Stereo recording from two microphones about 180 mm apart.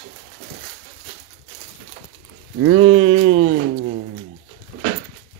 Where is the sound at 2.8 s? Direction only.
30° right (ahead or behind).